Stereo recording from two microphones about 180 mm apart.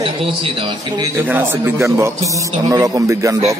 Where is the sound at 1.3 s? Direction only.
10° right (ahead or behind).